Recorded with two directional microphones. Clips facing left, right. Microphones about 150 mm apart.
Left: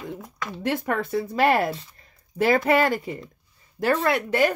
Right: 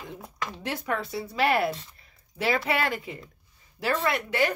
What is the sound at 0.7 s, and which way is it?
Speech, 50° left (ahead or behind).